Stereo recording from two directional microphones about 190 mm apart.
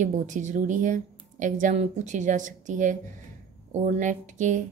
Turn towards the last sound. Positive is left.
turn(degrees=-40)  # may be behind; listen again after turning